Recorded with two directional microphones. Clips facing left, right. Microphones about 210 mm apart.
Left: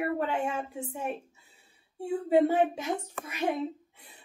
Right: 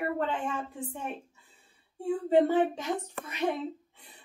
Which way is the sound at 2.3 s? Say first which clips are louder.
Even; 10° left (ahead or behind).